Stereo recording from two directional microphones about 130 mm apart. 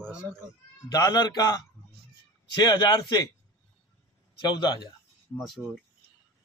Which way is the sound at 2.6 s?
35° left (ahead or behind).